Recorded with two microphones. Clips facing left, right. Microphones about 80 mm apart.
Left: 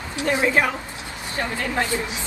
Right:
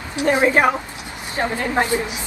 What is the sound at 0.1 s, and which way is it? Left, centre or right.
A woman's voice, right.